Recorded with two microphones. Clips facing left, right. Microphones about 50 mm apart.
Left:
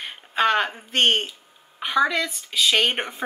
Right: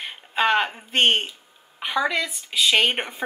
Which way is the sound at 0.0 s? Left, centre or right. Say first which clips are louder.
Left 1 dB; centre.